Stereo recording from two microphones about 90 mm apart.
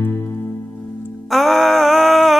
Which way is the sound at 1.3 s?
Centre (ahead or behind).